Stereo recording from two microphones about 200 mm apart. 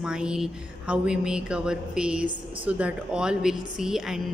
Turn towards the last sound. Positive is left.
turn(degrees=0)  # may be behind; listen again after turning